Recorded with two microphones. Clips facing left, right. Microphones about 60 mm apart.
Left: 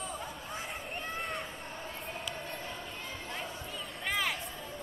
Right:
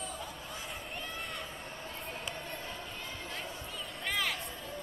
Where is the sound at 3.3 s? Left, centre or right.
Centre.